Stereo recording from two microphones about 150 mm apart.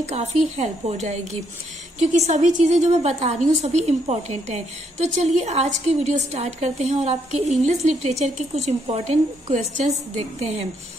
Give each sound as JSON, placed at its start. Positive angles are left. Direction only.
{"t": 0.0, "sound": "a woman's voice", "side_deg": -45}